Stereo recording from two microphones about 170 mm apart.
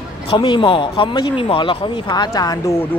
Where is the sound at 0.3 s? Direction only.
30° left (ahead or behind).